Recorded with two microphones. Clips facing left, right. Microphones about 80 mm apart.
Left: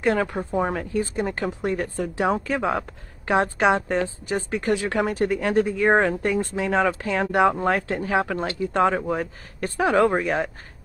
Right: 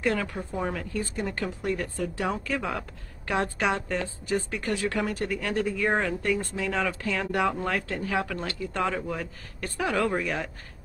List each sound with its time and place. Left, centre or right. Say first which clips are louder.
0.0 s speech: left 5 dB; left